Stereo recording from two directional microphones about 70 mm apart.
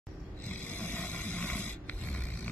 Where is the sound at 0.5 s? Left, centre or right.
Left.